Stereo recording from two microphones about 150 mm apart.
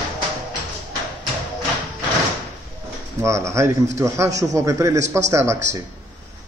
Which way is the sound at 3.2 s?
20° right (ahead or behind).